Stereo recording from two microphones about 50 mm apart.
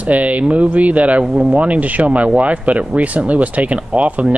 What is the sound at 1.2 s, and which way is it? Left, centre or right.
Speech, centre.